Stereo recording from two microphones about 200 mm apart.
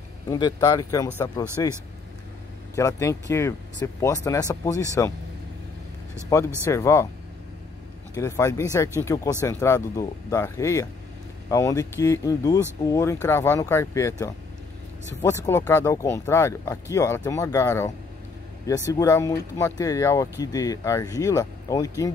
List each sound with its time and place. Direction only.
0.3 s speech: 15° left (ahead or behind)
2.7 s speech: 15° left (ahead or behind)
6.3 s speech: 15° left (ahead or behind)
8.1 s speech: 15° left (ahead or behind)
15.2 s speech: 10° left (ahead or behind)